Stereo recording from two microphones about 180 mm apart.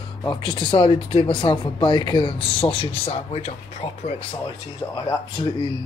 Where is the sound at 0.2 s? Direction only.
25° left (ahead or behind).